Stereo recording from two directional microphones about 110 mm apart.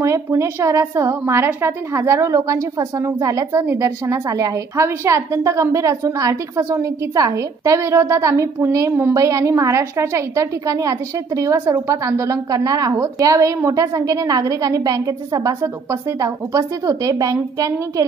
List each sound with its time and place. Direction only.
0.0 s a woman's voice: 25° right (ahead or behind)